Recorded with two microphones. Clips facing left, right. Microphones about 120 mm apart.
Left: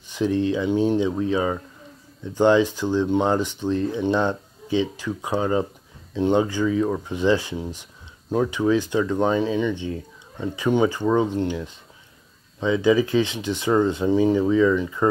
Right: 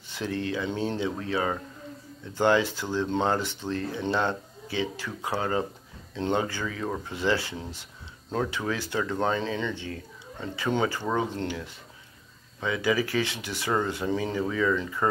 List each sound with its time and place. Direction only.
0.1 s speech: 15° left (ahead or behind)